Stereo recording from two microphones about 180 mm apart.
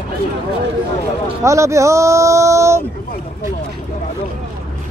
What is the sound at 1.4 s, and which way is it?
Speech, 15° right (ahead or behind).